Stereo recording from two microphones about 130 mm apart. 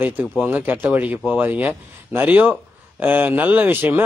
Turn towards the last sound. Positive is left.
turn(degrees=-15)  # may be behind; listen again after turning